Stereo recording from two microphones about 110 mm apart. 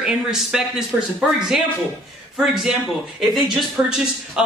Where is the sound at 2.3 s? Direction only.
5° right (ahead or behind).